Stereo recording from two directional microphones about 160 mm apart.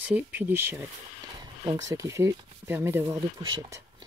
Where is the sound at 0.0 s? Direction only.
10° right (ahead or behind).